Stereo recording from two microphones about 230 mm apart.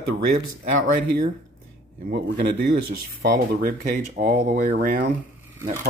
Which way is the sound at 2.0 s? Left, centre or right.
Right.